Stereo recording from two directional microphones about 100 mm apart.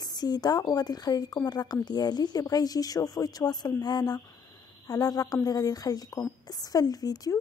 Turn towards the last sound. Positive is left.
turn(degrees=40)  # may be behind; listen again after turning